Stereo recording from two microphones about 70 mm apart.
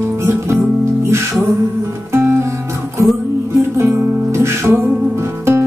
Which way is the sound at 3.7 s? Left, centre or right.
Right.